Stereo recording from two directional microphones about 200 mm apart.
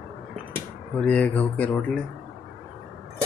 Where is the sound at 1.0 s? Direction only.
5° left (ahead or behind).